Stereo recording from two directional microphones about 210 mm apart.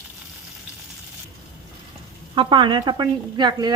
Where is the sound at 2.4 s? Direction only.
25° right (ahead or behind).